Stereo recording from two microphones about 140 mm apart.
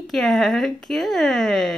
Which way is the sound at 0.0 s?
Centre (ahead or behind).